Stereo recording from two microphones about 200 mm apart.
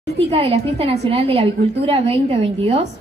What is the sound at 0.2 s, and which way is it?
A woman's voice, 30° right (ahead or behind).